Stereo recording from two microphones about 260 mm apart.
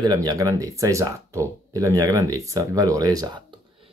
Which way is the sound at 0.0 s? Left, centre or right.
Centre.